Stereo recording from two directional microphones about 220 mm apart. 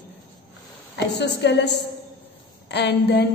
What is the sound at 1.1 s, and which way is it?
Speech, 50° left (ahead or behind).